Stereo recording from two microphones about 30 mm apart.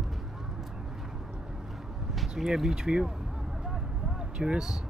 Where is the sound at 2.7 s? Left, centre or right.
Right.